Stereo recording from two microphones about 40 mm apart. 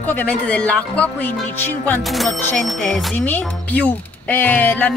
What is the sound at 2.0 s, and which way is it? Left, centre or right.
Speech, centre.